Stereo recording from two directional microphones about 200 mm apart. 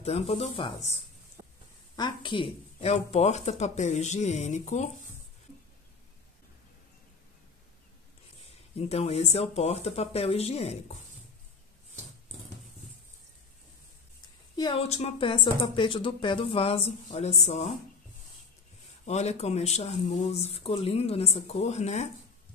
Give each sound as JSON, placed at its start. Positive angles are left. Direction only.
{"t": 0.0, "sound": "speech", "side_deg": 30}
{"t": 2.0, "sound": "speech", "side_deg": 25}
{"t": 8.7, "sound": "speech", "side_deg": 30}
{"t": 14.6, "sound": "a woman's voice", "side_deg": 30}
{"t": 19.0, "sound": "speech", "side_deg": 35}